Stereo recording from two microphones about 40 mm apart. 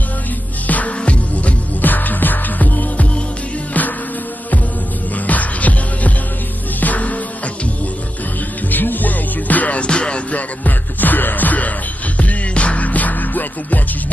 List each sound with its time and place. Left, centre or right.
0.7 s music: left
1.8 s music: left
5.2 s music: left
8.6 s music: left
9.8 s music: left
10.6 s music: left